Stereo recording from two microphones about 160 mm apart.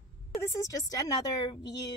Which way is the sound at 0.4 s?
20° left (ahead or behind).